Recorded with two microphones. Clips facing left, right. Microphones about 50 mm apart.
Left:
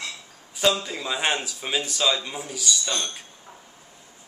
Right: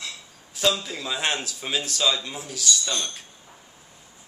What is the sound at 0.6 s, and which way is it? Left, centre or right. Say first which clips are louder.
Speech: left 1 dB; centre.